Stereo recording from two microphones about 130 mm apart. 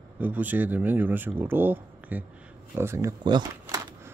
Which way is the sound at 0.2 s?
15° right (ahead or behind).